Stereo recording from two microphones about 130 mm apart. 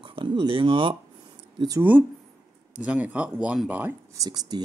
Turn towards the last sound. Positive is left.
turn(degrees=-30)  # may be behind; listen again after turning